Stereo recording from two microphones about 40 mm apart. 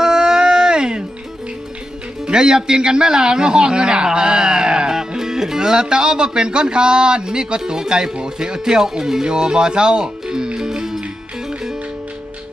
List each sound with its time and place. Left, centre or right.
0.0 s music: centre
2.2 s a man's voice: right